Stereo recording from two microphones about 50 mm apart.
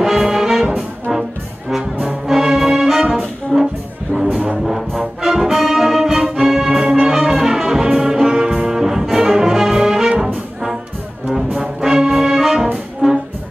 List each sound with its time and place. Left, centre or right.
0.0 s music: centre
4.2 s brass instrument: centre
4.6 s brass instrument: centre